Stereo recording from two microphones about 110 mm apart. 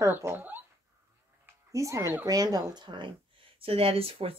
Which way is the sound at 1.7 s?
30° right (ahead or behind).